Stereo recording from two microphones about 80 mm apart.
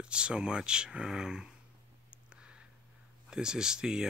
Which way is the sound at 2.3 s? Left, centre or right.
Centre.